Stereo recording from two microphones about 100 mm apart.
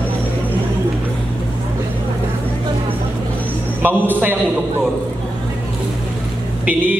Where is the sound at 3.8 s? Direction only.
20° right (ahead or behind).